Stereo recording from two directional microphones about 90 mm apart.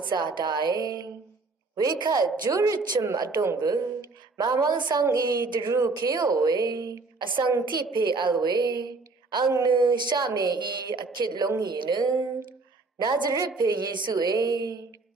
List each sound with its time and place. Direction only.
0.1 s a woman's voice: 55° right (ahead or behind)
5.7 s a woman's voice: 35° right (ahead or behind)
7.6 s a woman's voice: 60° right (ahead or behind)